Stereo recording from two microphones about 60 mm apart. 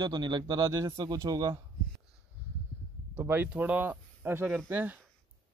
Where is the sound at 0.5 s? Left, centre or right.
Right.